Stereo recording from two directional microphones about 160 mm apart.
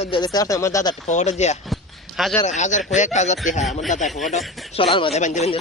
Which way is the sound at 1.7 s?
Centre (ahead or behind).